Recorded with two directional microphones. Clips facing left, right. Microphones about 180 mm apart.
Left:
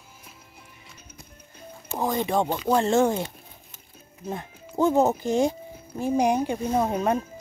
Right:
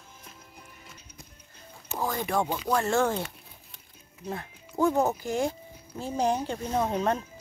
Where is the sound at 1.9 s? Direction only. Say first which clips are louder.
Left 5 dB; 20° left (ahead or behind).